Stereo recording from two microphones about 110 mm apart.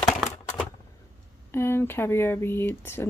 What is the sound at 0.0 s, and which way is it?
Typewriter, centre (ahead or behind).